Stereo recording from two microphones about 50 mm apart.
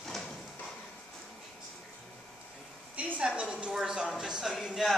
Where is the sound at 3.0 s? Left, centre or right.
Right; by 4.8 s centre.